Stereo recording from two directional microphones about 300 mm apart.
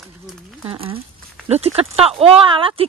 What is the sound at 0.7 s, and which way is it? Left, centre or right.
Speech, centre.